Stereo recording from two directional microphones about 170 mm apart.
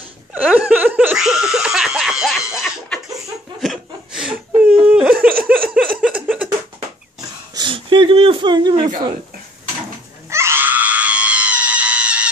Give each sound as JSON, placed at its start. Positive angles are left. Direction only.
{"t": 0.3, "sound": "laughter", "side_deg": -10}
{"t": 3.6, "sound": "chuckle", "side_deg": 0}
{"t": 4.5, "sound": "whimper", "side_deg": -10}
{"t": 5.9, "sound": "a sound", "side_deg": -5}
{"t": 7.2, "sound": "a sound", "side_deg": -25}
{"t": 10.3, "sound": "screaming", "side_deg": -15}